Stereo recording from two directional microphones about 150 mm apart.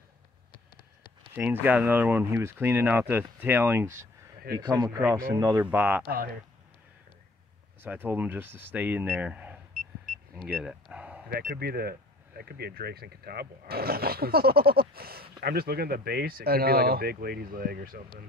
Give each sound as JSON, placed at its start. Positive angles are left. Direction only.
{"t": 1.3, "sound": "speech", "side_deg": -15}
{"t": 4.6, "sound": "speech", "side_deg": -30}
{"t": 6.0, "sound": "speech", "side_deg": -90}
{"t": 7.8, "sound": "speech", "side_deg": -15}
{"t": 10.3, "sound": "a sound", "side_deg": 0}
{"t": 11.2, "sound": "speech", "side_deg": -90}